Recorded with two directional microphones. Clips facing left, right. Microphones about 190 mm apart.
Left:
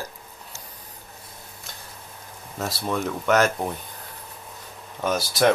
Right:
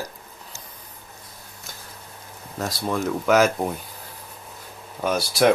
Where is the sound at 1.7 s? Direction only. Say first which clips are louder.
Right 2 dB; centre (ahead or behind).